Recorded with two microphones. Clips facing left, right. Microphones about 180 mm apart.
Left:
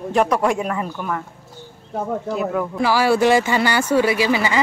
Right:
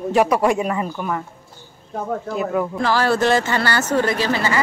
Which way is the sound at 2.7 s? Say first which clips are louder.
Left 4 dB; 10° left (ahead or behind).